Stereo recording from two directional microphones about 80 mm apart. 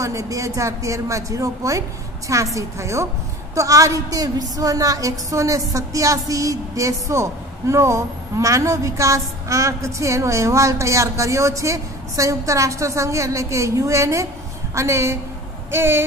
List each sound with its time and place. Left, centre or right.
0.0 s a woman's voice: right